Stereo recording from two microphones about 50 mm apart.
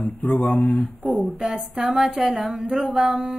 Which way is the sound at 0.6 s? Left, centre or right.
Centre.